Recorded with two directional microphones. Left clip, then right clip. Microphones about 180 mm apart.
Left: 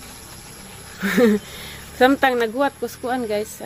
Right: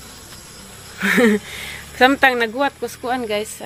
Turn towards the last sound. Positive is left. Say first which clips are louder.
# right 1 dB
turn(degrees=5)  # may be behind; listen again after turning